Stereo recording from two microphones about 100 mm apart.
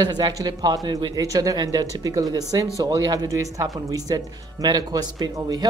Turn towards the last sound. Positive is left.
turn(degrees=-40)  # may be behind; listen again after turning